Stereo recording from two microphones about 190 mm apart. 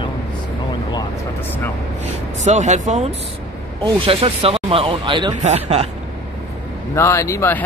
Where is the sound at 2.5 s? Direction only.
40° right (ahead or behind).